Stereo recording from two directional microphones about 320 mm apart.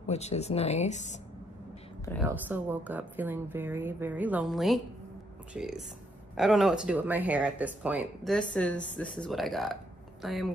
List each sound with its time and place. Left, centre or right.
0.0 s speech: centre
2.2 s speech: centre